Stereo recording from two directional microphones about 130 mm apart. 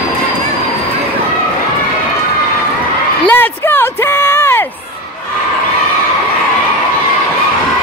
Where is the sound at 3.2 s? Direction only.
15° left (ahead or behind).